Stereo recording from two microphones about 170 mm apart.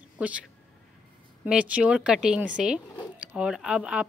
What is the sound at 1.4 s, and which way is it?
A woman's voice, 5° right (ahead or behind).